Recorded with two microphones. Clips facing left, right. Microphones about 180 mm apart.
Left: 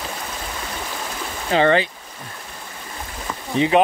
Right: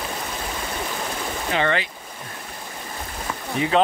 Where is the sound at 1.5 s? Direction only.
30° left (ahead or behind).